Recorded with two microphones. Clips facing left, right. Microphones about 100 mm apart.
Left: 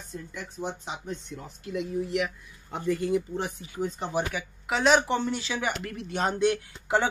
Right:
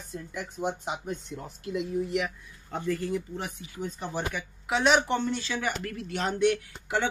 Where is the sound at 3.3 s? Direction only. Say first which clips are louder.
Left 5 dB; 25° left (ahead or behind).